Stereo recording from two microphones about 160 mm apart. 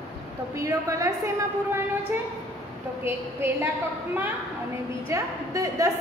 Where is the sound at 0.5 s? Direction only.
20° right (ahead or behind).